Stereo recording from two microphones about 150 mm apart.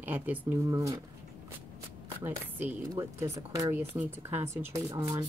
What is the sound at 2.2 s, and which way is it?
Speech, 10° right (ahead or behind).